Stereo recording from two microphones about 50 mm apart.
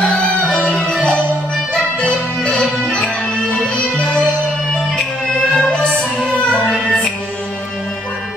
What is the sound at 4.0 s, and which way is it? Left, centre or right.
Music, left.